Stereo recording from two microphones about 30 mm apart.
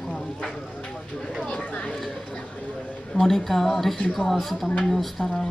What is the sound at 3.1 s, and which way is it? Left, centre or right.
A woman's voice, centre.